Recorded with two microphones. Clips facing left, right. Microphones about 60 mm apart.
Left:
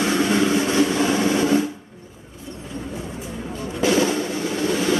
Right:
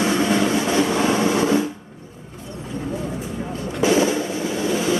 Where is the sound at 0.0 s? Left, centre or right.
Centre.